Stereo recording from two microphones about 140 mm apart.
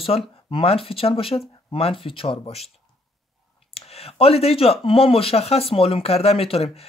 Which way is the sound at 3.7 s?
45° left (ahead or behind).